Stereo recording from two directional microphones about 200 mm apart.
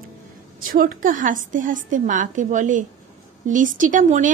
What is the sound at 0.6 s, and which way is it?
A woman's voice, 45° right (ahead or behind).